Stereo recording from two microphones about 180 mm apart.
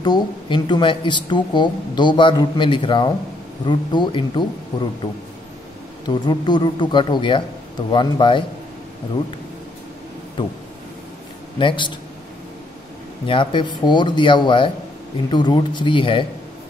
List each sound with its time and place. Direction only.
0.0 s speech: 25° left (ahead or behind)
6.0 s speech: 25° left (ahead or behind)
11.5 s speech: 25° left (ahead or behind)
13.3 s speech: 25° left (ahead or behind)